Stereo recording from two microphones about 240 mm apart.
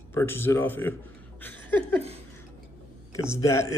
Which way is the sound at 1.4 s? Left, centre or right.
Centre.